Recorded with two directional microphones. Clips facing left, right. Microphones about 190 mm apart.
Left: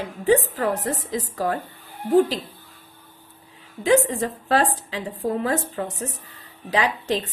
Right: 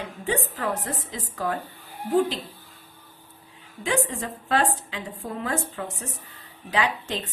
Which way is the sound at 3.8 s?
40° left (ahead or behind).